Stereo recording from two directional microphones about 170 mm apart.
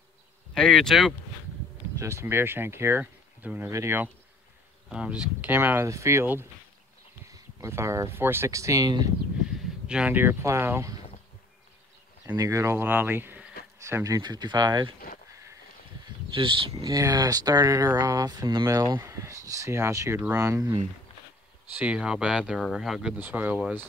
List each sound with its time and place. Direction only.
0.6 s speech: 5° left (ahead or behind)
2.0 s speech: 15° right (ahead or behind)
9.6 s speech: 5° right (ahead or behind)
12.4 s speech: 20° right (ahead or behind)
16.3 s speech: 30° right (ahead or behind)
21.7 s speech: 5° right (ahead or behind)